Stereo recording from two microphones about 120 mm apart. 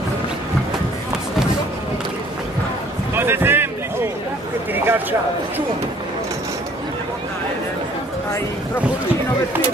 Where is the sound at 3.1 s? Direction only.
20° right (ahead or behind).